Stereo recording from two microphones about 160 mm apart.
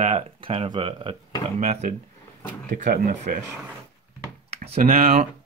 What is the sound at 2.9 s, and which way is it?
Speech, 60° right (ahead or behind).